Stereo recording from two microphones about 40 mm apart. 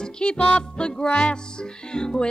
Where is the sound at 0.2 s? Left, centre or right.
Left.